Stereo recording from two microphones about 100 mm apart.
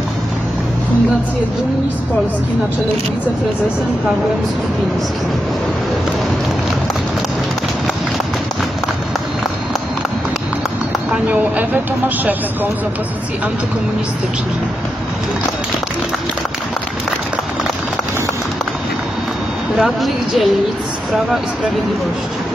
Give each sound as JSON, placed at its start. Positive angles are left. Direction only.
{"t": 11.2, "sound": "speech", "side_deg": -15}
{"t": 19.8, "sound": "speech", "side_deg": 0}